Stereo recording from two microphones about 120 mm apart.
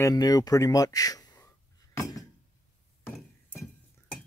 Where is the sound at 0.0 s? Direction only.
30° left (ahead or behind).